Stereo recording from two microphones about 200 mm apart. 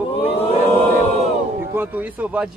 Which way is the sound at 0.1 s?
30° left (ahead or behind).